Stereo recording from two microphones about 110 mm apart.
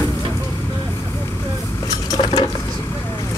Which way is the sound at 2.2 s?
40° left (ahead or behind).